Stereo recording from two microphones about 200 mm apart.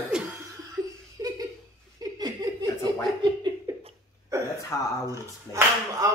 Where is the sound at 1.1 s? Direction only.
20° right (ahead or behind).